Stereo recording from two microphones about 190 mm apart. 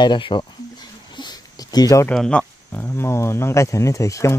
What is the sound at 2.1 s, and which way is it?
Speech, 5° left (ahead or behind).